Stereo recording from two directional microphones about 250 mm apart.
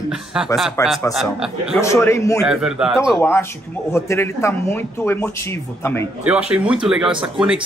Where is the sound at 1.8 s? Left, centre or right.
Centre.